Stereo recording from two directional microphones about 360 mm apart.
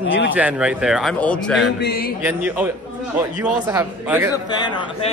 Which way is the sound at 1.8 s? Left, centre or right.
Left.